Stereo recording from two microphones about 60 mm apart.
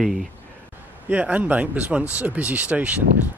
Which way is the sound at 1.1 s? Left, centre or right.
Right.